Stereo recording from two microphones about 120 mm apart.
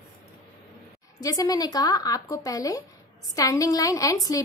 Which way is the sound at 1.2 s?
30° left (ahead or behind).